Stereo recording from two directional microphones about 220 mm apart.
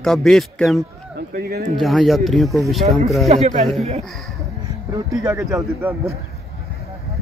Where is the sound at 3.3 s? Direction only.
30° right (ahead or behind).